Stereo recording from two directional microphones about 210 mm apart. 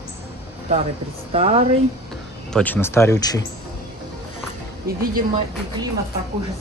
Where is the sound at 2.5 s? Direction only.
10° left (ahead or behind).